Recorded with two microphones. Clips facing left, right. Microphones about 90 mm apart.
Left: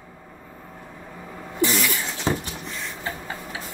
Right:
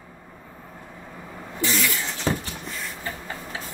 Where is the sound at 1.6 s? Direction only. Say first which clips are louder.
Left 2 dB; 15° left (ahead or behind).